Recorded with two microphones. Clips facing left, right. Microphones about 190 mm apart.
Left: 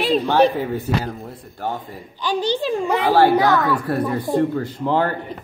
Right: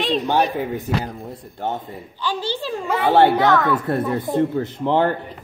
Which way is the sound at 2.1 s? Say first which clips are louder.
Left 4 dB; 15° left (ahead or behind).